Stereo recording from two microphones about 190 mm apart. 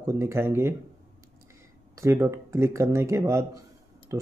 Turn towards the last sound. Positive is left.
turn(degrees=-15)  # may be behind; listen again after turning